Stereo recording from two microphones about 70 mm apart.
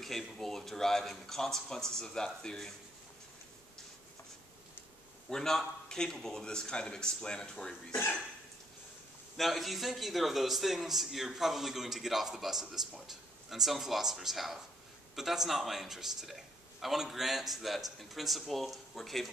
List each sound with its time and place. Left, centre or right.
0.0 s speech: centre
5.3 s speech: centre
7.9 s speech: left
9.4 s a man's voice: centre